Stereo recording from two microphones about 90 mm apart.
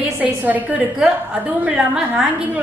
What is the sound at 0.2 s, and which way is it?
A woman's voice, 15° right (ahead or behind).